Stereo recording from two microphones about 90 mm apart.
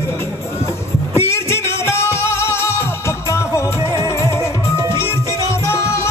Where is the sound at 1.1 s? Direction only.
30° left (ahead or behind).